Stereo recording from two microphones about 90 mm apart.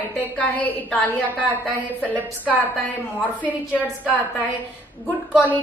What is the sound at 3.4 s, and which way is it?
Speech, 15° right (ahead or behind).